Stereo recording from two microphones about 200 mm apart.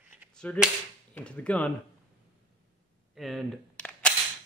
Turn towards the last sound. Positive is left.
turn(degrees=5)  # may be behind; listen again after turning